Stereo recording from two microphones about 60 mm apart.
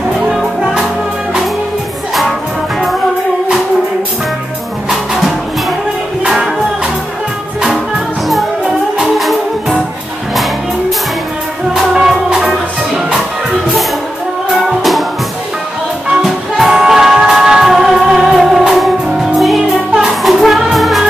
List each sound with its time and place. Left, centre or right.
0.3 s music: centre
4.8 s music: centre
9.2 s music: centre
11.7 s music: centre
14.5 s music: centre
16.1 s music: centre